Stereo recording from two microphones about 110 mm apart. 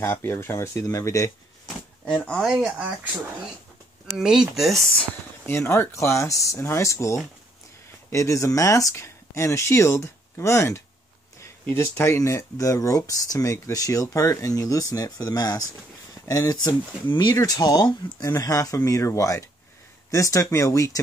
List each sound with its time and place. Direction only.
0.0 s speech: 20° left (ahead or behind)
2.0 s speech: 10° left (ahead or behind)
2.6 s speech: 15° right (ahead or behind)
4.2 s speech: 5° right (ahead or behind)
5.5 s speech: 20° left (ahead or behind)